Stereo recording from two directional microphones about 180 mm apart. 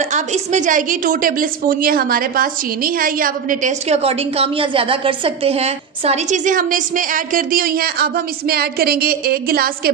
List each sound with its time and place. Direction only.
0.1 s a woman's voice: 40° right (ahead or behind); by 9.7 s 55° right (ahead or behind)